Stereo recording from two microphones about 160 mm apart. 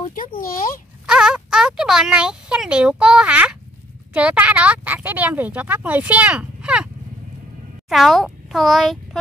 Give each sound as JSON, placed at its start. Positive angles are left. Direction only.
{"t": 0.0, "sound": "a sound", "side_deg": 55}
{"t": 1.0, "sound": "speech", "side_deg": -5}
{"t": 7.9, "sound": "a child's voice", "side_deg": 0}